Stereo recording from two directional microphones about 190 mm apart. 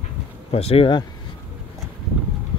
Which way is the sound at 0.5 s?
30° left (ahead or behind).